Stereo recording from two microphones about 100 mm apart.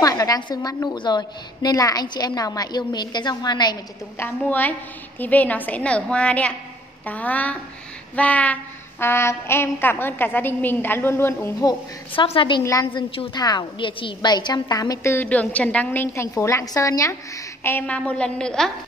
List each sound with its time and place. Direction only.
0.0 s a sound: 35° left (ahead or behind)
0.4 s a woman's voice: 45° left (ahead or behind)
4.2 s a woman's voice: 20° left (ahead or behind)
9.0 s a woman's voice: 25° left (ahead or behind)
12.3 s a woman's voice: 55° left (ahead or behind)
13.3 s a woman's voice: 45° left (ahead or behind)
15.1 s a woman's voice: 15° left (ahead or behind)
16.1 s a woman's voice: 30° left (ahead or behind)
17.6 s a woman's voice: 15° left (ahead or behind)